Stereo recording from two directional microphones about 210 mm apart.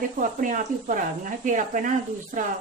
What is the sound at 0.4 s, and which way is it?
Speech, 40° right (ahead or behind).